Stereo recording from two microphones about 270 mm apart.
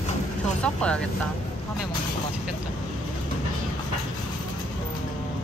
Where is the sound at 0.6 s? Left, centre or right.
Centre.